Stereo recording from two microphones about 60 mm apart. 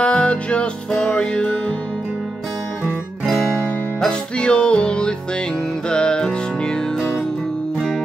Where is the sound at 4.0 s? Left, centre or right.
Centre.